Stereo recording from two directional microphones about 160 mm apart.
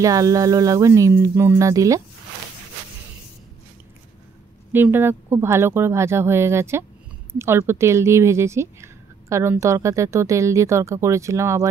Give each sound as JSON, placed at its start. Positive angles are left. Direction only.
{"t": 0.0, "sound": "speech", "side_deg": -20}
{"t": 4.7, "sound": "speech", "side_deg": -15}